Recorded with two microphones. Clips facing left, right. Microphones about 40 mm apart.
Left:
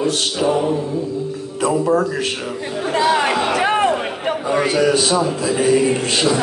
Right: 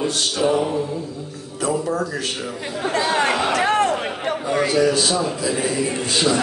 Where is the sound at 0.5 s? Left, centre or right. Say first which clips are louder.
Left 3 dB; centre.